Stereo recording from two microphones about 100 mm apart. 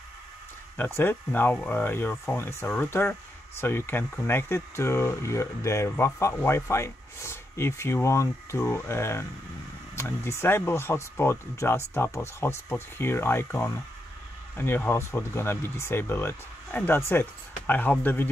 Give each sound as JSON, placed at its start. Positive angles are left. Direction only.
{"t": 0.7, "sound": "speech", "side_deg": 25}